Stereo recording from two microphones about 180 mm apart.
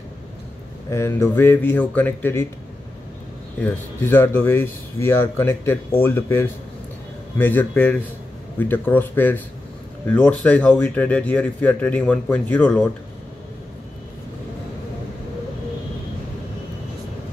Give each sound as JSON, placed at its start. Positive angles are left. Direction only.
{"t": 0.8, "sound": "speech", "side_deg": 15}
{"t": 3.6, "sound": "speech", "side_deg": 10}